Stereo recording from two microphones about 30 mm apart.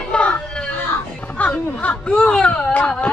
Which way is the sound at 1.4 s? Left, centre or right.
Left.